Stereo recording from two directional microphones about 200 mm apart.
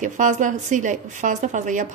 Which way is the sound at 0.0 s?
40° right (ahead or behind).